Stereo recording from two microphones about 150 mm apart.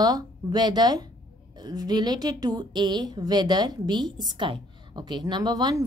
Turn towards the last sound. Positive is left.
turn(degrees=-25)  # may be behind; listen again after turning